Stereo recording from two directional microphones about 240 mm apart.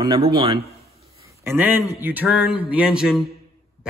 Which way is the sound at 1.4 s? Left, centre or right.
Centre.